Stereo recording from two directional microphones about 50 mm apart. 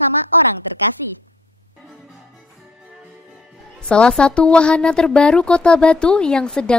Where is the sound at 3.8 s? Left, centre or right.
Left.